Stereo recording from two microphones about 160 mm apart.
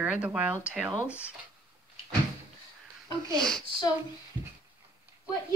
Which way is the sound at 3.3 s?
5° left (ahead or behind).